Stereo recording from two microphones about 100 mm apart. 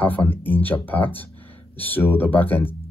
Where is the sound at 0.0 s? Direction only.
15° left (ahead or behind).